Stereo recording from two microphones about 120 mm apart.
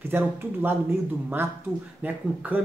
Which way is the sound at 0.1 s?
15° right (ahead or behind).